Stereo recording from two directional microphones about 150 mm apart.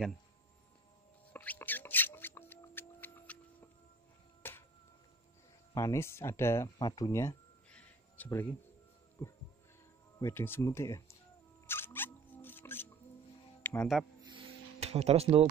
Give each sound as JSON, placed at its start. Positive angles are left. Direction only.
{"t": 1.3, "sound": "music", "side_deg": 10}
{"t": 4.4, "sound": "a sound", "side_deg": 15}
{"t": 5.8, "sound": "speech", "side_deg": 20}
{"t": 7.7, "sound": "a sound", "side_deg": 10}
{"t": 9.2, "sound": "heart sounds", "side_deg": 20}
{"t": 10.1, "sound": "speech", "side_deg": 15}
{"t": 11.6, "sound": "a sound", "side_deg": 15}
{"t": 13.6, "sound": "music", "side_deg": 15}
{"t": 14.8, "sound": "speech", "side_deg": -45}